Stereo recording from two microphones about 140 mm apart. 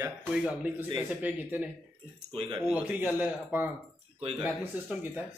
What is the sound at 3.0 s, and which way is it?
Speech, 10° right (ahead or behind).